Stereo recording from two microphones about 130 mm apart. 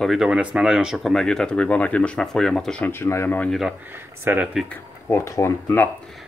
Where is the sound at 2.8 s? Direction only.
20° left (ahead or behind).